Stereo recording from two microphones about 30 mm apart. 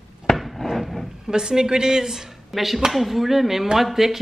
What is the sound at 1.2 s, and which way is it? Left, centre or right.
A woman's voice, right.